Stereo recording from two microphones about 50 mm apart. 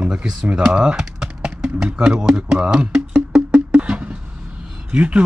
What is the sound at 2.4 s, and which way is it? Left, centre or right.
Music, right.